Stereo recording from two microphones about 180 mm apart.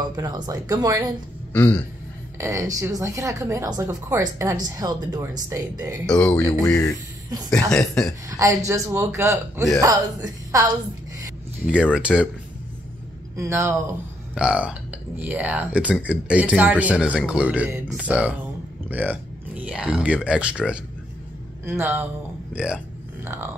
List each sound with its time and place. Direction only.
0.0 s speech: 20° right (ahead or behind)
1.5 s a man's voice: 10° left (ahead or behind)
2.3 s speech: 15° right (ahead or behind)
6.0 s speech: 5° left (ahead or behind)
7.5 s speech: 5° left (ahead or behind)
8.3 s speech: 15° right (ahead or behind)
11.6 s speech: 5° right (ahead or behind)
13.4 s speech: 15° right (ahead or behind)